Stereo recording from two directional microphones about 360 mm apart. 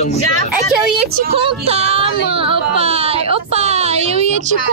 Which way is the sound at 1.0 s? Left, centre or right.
Right.